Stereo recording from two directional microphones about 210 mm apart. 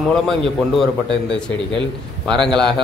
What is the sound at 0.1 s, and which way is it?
Speech, centre (ahead or behind).